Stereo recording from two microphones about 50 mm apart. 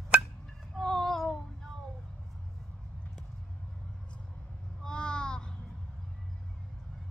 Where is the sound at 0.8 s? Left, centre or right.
Centre.